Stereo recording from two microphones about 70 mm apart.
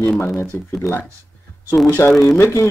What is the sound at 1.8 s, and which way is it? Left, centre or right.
Speech, centre.